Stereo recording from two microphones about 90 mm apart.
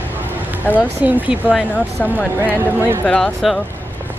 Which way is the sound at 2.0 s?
20° left (ahead or behind).